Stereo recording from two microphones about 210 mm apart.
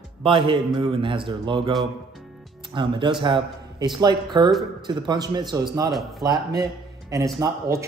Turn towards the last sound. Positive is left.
turn(degrees=-15)  # may be behind; listen again after turning